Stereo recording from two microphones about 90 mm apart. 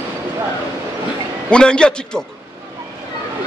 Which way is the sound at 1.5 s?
10° left (ahead or behind).